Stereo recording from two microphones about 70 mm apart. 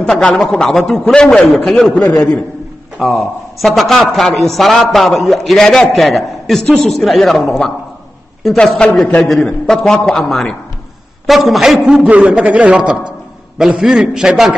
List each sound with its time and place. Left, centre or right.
0.0 s a man's voice: centre
3.0 s a man's voice: centre
9.2 s a man's voice: centre